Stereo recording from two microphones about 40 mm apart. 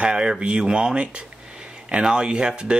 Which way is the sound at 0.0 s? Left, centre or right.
Right.